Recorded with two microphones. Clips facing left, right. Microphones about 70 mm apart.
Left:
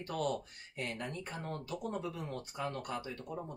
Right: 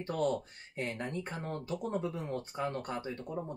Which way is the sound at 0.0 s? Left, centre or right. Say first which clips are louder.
Right 4 dB; right.